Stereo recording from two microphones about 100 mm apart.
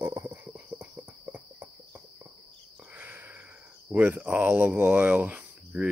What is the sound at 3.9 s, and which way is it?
Speech, 15° right (ahead or behind).